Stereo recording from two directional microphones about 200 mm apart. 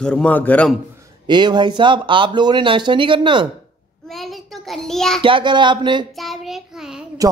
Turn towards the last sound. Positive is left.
turn(degrees=-5)  # may be behind; listen again after turning